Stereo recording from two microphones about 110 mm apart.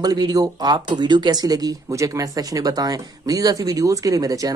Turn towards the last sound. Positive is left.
turn(degrees=-30)  # may be behind; listen again after turning